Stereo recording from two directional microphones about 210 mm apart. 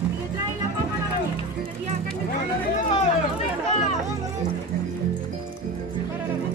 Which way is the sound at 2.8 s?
35° left (ahead or behind).